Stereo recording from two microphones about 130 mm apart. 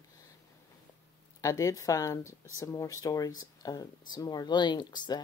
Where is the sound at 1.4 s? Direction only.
25° left (ahead or behind).